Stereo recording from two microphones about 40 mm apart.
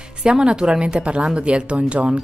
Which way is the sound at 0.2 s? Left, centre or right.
Right.